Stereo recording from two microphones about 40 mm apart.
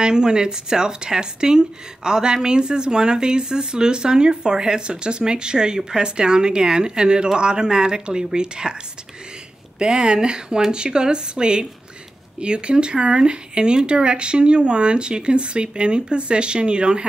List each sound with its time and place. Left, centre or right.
0.0 s a woman's voice: centre
9.8 s a woman's voice: right